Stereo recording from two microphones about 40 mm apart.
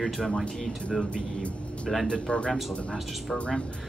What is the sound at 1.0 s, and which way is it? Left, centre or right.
Speech, left.